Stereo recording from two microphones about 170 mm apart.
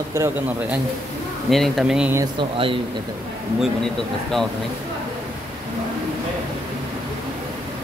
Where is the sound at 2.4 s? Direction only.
30° right (ahead or behind).